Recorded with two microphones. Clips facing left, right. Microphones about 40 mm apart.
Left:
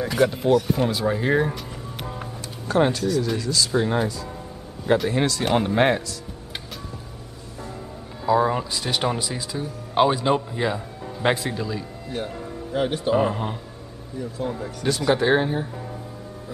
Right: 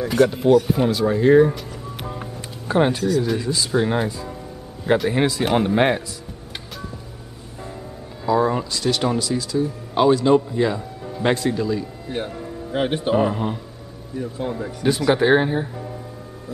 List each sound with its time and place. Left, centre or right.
0.0 s speech: centre
2.7 s speech: centre
8.3 s a man's voice: centre
12.1 s speech: right
13.2 s speech: centre
14.5 s speech: centre